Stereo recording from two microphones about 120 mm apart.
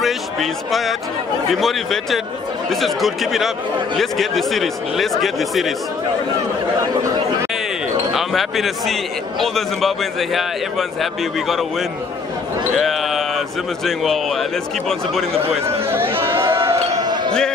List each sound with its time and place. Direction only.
0.0 s speech: centre (ahead or behind)
8.1 s speech: centre (ahead or behind)
12.7 s speech: centre (ahead or behind)
15.3 s speech: 55° right (ahead or behind)
15.9 s a sound: 20° right (ahead or behind)
17.0 s basketball bounce: 35° right (ahead or behind)